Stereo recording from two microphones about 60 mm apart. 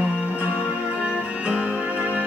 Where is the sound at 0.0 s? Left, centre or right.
Right.